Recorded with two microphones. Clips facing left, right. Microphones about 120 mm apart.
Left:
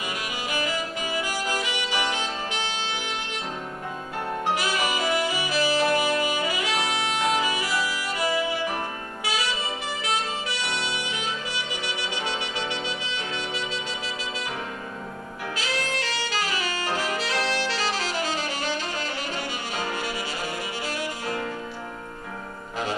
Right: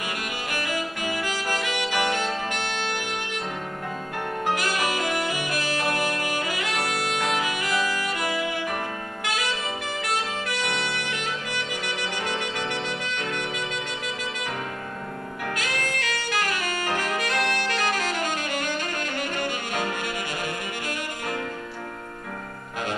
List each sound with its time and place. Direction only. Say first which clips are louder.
0.5 s music: left 1 dB; 50° right (ahead or behind)
4.6 s music: even; 50° right (ahead or behind)
7.2 s saxophone: left 2 dB; 55° right (ahead or behind)
10.0 s music: even; 50° right (ahead or behind)
15.4 s saxophone: even; 55° right (ahead or behind)